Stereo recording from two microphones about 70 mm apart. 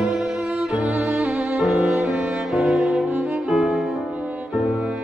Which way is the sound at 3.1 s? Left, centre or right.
Right.